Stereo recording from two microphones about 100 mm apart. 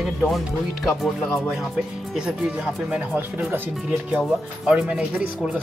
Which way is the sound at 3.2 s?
20° right (ahead or behind).